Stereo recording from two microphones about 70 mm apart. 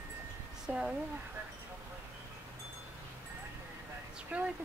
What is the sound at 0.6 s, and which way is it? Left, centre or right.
Speech, centre.